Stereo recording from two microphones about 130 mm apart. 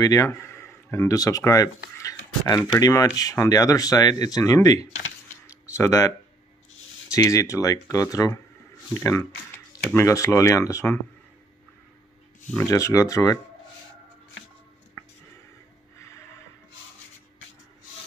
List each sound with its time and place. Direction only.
0.0 s speech: 25° left (ahead or behind)
5.8 s speech: 25° left (ahead or behind)
9.8 s speech: 20° left (ahead or behind)
12.6 s speech: 25° left (ahead or behind)